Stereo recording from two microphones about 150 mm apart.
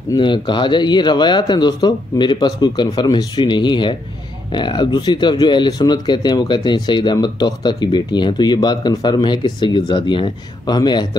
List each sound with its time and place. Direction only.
0.1 s speech: 30° left (ahead or behind)